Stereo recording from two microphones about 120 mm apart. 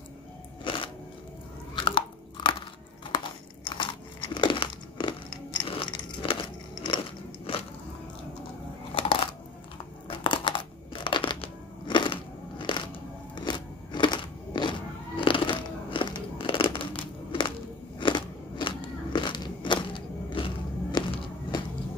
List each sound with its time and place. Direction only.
1.8 s chewing: 40° left (ahead or behind)
3.6 s crunch: 45° left (ahead or behind)
10.0 s a sound: 45° left (ahead or behind)